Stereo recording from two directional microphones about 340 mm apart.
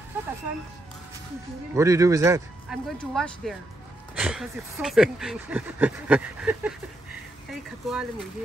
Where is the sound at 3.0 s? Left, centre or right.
Centre.